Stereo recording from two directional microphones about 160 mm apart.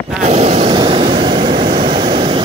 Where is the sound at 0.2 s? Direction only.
40° right (ahead or behind).